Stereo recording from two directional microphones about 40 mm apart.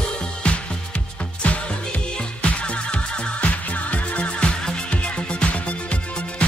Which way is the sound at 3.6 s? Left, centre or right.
Left.